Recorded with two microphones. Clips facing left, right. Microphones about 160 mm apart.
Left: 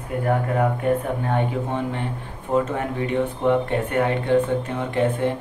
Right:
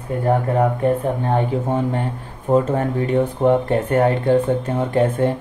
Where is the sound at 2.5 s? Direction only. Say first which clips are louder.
Right 5 dB; 40° right (ahead or behind).